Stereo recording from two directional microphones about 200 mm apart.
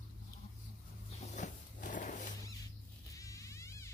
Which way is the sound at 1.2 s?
35° left (ahead or behind).